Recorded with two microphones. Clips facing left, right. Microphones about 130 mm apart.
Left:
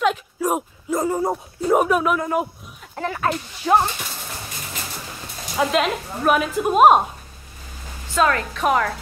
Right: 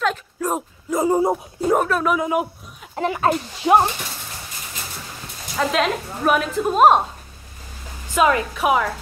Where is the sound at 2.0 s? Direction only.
5° right (ahead or behind).